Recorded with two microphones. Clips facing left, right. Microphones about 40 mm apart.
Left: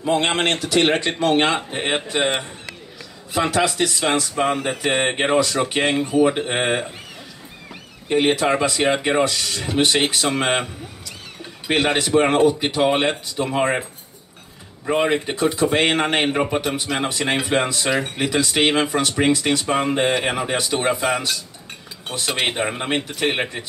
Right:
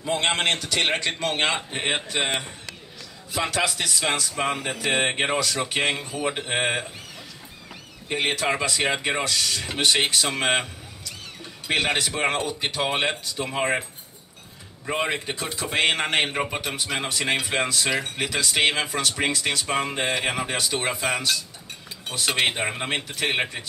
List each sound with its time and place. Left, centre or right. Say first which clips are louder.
0.0 s speech: left 4 dB; centre
3.5 s speech: left 5 dB; centre
4.6 s a sound: left 4 dB; left
4.9 s speech: left 5 dB; centre
8.1 s speech: left 6 dB; centre
11.7 s speech: left 6 dB; centre
14.9 s speech: left 6 dB; centre